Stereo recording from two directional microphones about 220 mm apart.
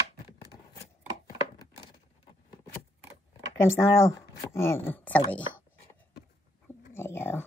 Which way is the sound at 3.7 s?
10° left (ahead or behind).